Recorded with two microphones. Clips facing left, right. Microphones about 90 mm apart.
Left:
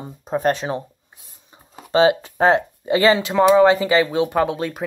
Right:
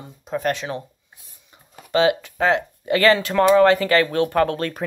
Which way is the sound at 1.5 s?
30° left (ahead or behind).